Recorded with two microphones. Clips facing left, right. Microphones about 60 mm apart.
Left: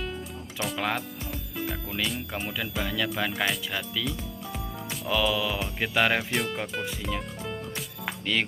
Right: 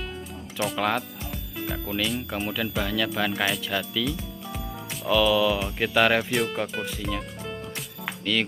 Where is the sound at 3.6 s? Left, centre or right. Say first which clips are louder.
Right 4 dB; centre.